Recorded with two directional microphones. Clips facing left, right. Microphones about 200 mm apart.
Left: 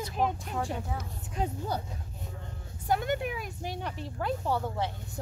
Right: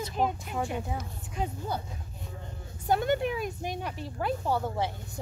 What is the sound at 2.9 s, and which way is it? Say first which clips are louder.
Speech: right 4 dB; 30° right (ahead or behind).